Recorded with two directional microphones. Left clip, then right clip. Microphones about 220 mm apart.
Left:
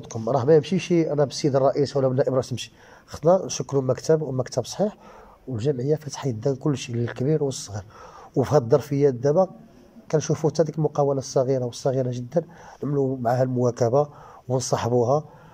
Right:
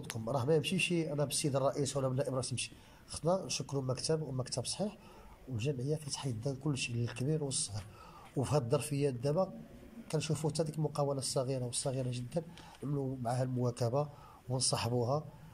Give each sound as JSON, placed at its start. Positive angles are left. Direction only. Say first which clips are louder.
{"t": 0.1, "sound": "speech", "louder": "left 14 dB", "side_deg": 25}